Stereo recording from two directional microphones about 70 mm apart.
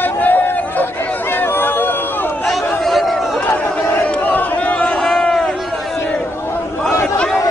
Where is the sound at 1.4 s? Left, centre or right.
Left.